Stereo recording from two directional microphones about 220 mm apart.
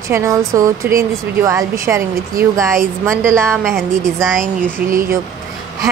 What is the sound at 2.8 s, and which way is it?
Speech, 5° left (ahead or behind).